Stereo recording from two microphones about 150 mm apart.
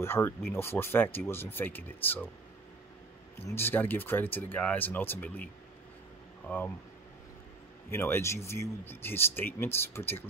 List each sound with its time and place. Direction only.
0.0 s speech: 15° left (ahead or behind)
3.3 s speech: 15° left (ahead or behind)
7.9 s speech: 15° left (ahead or behind)